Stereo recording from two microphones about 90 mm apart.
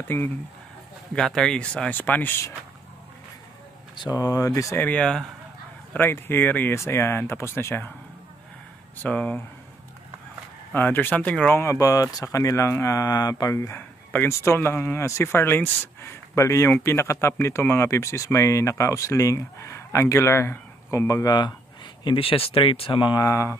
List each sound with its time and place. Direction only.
0.1 s speech: 25° left (ahead or behind)
1.1 s speech: 5° left (ahead or behind)
3.9 s speech: 50° left (ahead or behind)
4.7 s speech: 15° left (ahead or behind)
5.9 s speech: 25° left (ahead or behind)
9.0 s speech: 15° left (ahead or behind)
10.7 s speech: 20° left (ahead or behind)
11.5 s speech: 30° left (ahead or behind)
13.7 s a sound: 20° left (ahead or behind)
14.4 s speech: 30° left (ahead or behind); by 21.5 s 45° left (ahead or behind)
22.0 s speech: 80° left
23.1 s speech: 35° left (ahead or behind)